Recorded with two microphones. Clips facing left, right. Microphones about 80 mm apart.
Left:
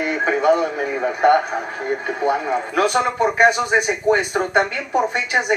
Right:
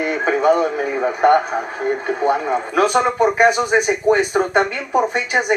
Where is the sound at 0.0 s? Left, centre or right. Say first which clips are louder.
Right 1 dB; centre.